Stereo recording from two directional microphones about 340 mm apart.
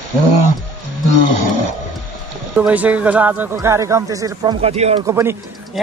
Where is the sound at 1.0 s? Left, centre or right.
Right.